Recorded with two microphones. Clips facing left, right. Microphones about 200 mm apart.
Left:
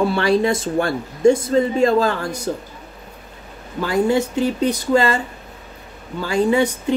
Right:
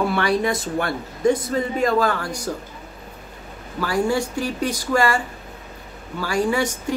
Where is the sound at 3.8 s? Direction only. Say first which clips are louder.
Left 4 dB; 20° left (ahead or behind).